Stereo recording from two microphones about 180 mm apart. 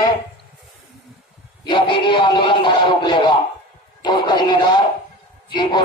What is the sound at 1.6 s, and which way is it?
A man's voice, 25° left (ahead or behind).